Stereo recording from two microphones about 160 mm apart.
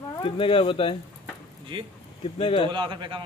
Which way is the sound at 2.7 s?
30° right (ahead or behind).